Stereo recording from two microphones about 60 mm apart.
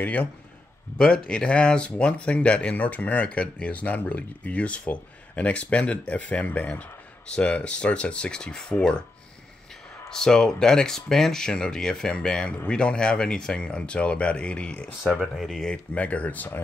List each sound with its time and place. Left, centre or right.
0.0 s speech: left
0.9 s speech: centre
10.0 s speech: centre
15.3 s speech: centre
15.7 s speech: left